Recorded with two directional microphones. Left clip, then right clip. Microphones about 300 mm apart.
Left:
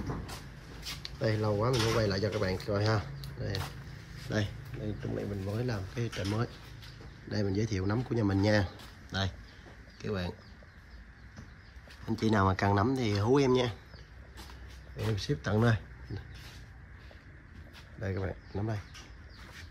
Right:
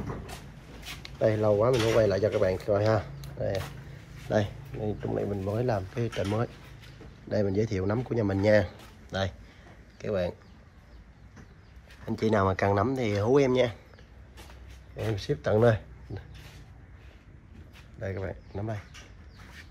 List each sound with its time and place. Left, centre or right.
1.0 s speech: centre
4.8 s speech: right
5.6 s speech: centre
12.1 s speech: centre
15.0 s speech: centre
18.0 s speech: centre